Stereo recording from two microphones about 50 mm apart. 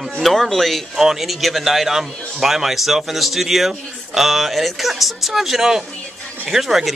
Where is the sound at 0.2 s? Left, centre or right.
Centre.